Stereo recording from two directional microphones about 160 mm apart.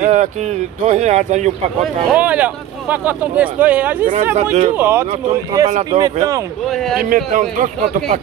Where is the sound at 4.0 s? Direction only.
55° right (ahead or behind).